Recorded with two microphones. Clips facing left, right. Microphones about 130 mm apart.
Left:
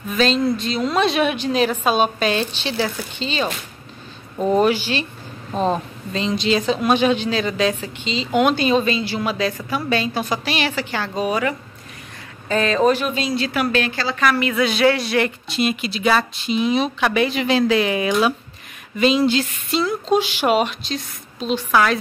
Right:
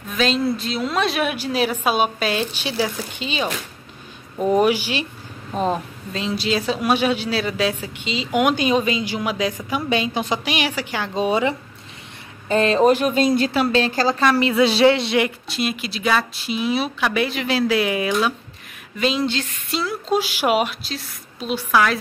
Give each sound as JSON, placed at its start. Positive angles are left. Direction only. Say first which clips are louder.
{"t": 0.2, "sound": "speech", "louder": "left 2 dB", "side_deg": -5}
{"t": 11.1, "sound": "a woman's voice", "louder": "right 2 dB", "side_deg": -25}
{"t": 13.0, "sound": "speech", "louder": "right 5 dB", "side_deg": -50}
{"t": 13.5, "sound": "a woman's voice", "louder": "right 2 dB", "side_deg": -25}
{"t": 13.9, "sound": "a woman's voice", "louder": "right 5 dB", "side_deg": -40}
{"t": 14.2, "sound": "a woman's voice", "louder": "right 1 dB", "side_deg": -30}
{"t": 15.1, "sound": "speech", "louder": "left 1 dB", "side_deg": -5}